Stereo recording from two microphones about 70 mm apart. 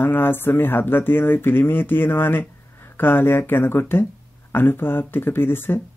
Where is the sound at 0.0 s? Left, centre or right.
Left.